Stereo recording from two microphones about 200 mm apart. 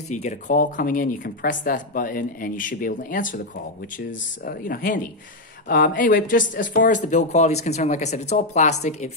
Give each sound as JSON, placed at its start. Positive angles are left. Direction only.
{"t": 0.1, "sound": "speech", "side_deg": 35}